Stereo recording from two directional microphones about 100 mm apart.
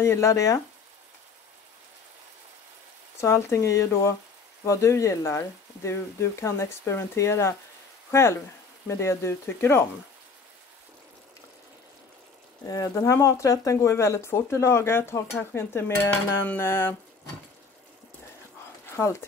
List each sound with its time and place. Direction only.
0.0 s speech: 30° left (ahead or behind)
3.2 s speech: 25° left (ahead or behind)
12.6 s speech: 35° left (ahead or behind)
18.9 s speech: 30° left (ahead or behind)